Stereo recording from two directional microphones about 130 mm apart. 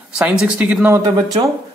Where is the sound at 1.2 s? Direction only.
25° right (ahead or behind).